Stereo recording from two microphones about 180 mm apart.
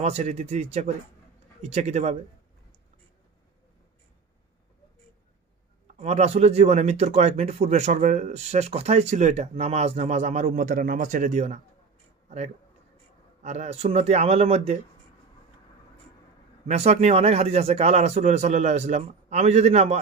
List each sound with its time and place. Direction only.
0.0 s speech: 35° right (ahead or behind)
5.9 s speech: 40° right (ahead or behind)
13.4 s speech: 40° right (ahead or behind)
16.6 s speech: 35° right (ahead or behind)